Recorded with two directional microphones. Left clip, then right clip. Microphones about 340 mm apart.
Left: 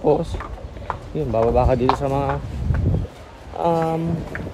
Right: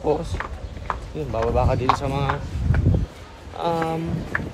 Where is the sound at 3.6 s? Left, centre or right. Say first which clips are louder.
Left 4 dB; centre.